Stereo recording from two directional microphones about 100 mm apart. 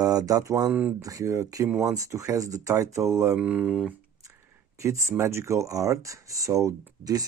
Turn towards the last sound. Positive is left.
turn(degrees=-35)  # may be behind; listen again after turning